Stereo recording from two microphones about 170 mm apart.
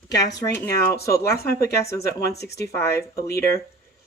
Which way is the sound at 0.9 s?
15° left (ahead or behind).